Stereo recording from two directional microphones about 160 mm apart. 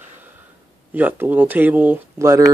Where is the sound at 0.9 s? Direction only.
10° right (ahead or behind).